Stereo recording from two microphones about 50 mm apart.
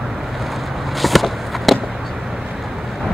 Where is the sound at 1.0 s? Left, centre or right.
Centre.